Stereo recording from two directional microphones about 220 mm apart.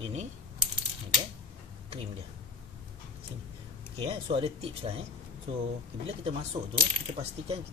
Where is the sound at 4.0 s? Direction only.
25° right (ahead or behind).